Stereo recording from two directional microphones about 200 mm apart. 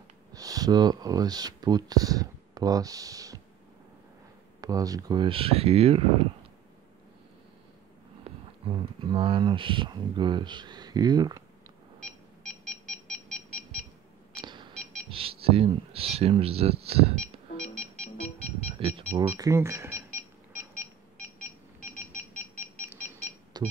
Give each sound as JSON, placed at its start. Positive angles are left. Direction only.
{"t": 0.3, "sound": "speech", "side_deg": -20}
{"t": 4.6, "sound": "speech", "side_deg": -20}
{"t": 8.2, "sound": "speech", "side_deg": -25}
{"t": 12.0, "sound": "a sound", "side_deg": 0}
{"t": 14.3, "sound": "beep", "side_deg": -25}
{"t": 15.0, "sound": "speech", "side_deg": -25}
{"t": 18.0, "sound": "music", "side_deg": 30}
{"t": 18.8, "sound": "speech", "side_deg": -30}
{"t": 19.2, "sound": "speech", "side_deg": -15}
{"t": 20.5, "sound": "beep", "side_deg": 0}
{"t": 23.5, "sound": "music", "side_deg": -20}